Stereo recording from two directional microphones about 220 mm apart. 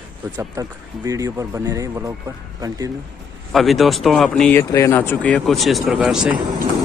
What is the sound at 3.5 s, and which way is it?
Speech, centre (ahead or behind).